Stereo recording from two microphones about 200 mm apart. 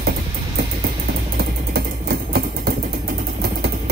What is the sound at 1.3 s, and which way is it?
Vehicle, 55° right (ahead or behind).